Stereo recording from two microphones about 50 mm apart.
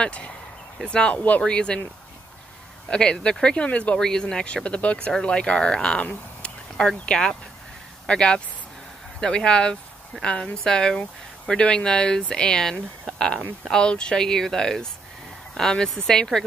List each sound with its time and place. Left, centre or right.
0.8 s speech: left
2.9 s speech: centre
4.0 s speech: centre
7.1 s speech: centre
13.1 s a sound: centre
13.7 s speech: centre